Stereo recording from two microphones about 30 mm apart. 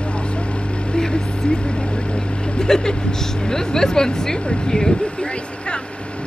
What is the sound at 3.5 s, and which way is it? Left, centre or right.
Speech, left.